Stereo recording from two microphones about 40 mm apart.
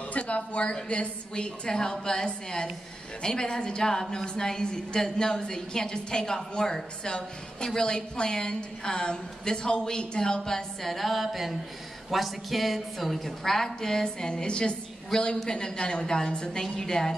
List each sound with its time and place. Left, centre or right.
0.1 s a woman's voice: left; by 17.1 s centre